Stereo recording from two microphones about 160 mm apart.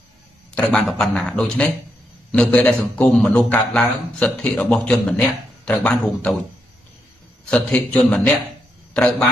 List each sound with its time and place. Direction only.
0.6 s a man's voice: 5° left (ahead or behind)
7.4 s a man's voice: 5° left (ahead or behind)